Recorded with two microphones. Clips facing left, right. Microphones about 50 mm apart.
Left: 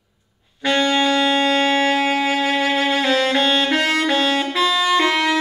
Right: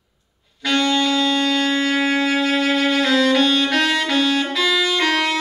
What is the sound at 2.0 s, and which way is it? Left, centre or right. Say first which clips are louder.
Saxophone: even; left.